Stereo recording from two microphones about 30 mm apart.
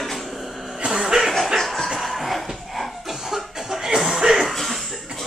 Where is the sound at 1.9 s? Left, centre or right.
Centre.